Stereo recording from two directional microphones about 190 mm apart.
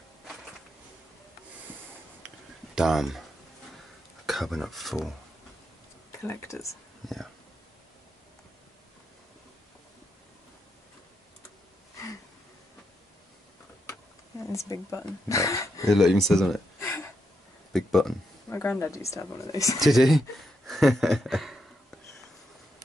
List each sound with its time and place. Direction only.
2.7 s speech: centre (ahead or behind)
4.3 s speech: centre (ahead or behind)
6.2 s speech: 15° left (ahead or behind)
7.0 s speech: centre (ahead or behind)
14.5 s speech: 15° left (ahead or behind)
15.9 s speech: centre (ahead or behind)
17.7 s speech: centre (ahead or behind)
18.5 s speech: 15° left (ahead or behind)
19.8 s speech: centre (ahead or behind)